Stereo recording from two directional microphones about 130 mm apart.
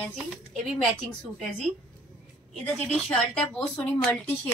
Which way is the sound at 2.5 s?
5° left (ahead or behind).